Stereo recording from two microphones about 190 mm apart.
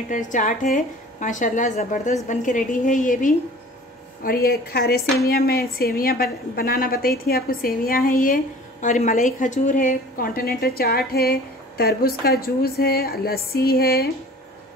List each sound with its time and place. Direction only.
0.1 s a woman's voice: 45° left (ahead or behind)